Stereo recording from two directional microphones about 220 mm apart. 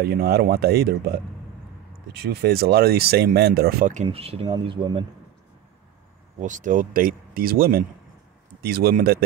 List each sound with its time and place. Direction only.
0.0 s speech: 45° right (ahead or behind)
2.1 s speech: 45° right (ahead or behind); by 5.0 s 25° right (ahead or behind)
6.4 s speech: 35° right (ahead or behind)